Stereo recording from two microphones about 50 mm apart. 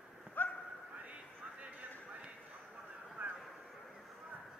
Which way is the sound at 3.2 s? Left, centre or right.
Right.